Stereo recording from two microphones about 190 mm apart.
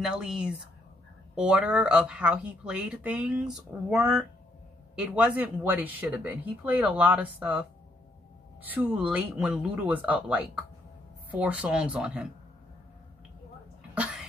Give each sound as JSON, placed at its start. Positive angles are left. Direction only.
{"t": 0.0, "sound": "speech", "side_deg": -5}
{"t": 8.6, "sound": "speech", "side_deg": -10}
{"t": 13.9, "sound": "cough", "side_deg": -5}